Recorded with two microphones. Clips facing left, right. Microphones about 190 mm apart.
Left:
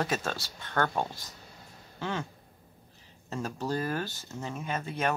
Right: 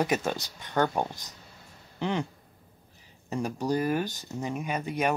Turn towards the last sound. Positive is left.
turn(degrees=-15)  # may be behind; listen again after turning